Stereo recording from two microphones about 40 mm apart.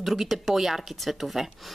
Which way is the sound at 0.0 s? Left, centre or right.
Centre.